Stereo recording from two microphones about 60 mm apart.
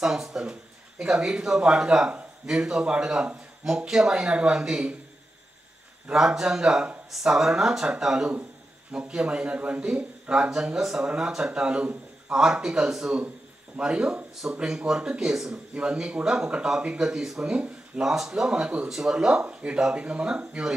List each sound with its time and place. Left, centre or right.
0.0 s speech: centre
6.1 s speech: centre
17.4 s speech: centre
18.0 s speech: centre